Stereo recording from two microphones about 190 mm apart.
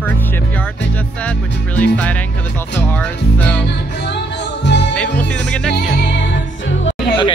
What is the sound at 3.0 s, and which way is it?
Music, 5° left (ahead or behind).